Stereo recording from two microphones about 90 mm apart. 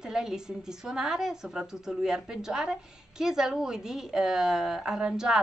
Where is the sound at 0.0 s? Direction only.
5° right (ahead or behind).